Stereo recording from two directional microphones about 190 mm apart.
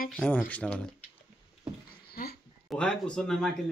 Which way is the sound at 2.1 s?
55° left (ahead or behind).